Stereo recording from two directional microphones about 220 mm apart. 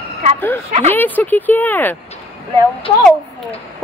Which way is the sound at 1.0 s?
10° left (ahead or behind).